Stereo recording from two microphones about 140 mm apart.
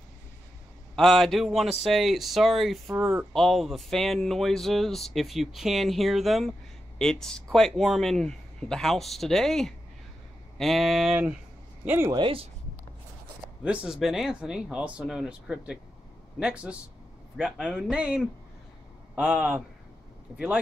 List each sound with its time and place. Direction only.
0.9 s speech: 5° left (ahead or behind)
3.0 s speech: 10° right (ahead or behind)
3.3 s speech: centre (ahead or behind)
11.8 s speech: 15° right (ahead or behind)
12.1 s speech: 40° right (ahead or behind)
13.7 s speech: 5° right (ahead or behind)